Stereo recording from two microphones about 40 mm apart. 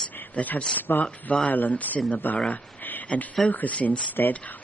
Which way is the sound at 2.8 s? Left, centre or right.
Left.